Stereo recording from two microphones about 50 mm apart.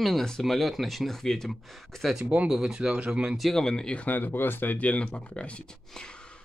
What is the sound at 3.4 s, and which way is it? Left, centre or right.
Speech, centre.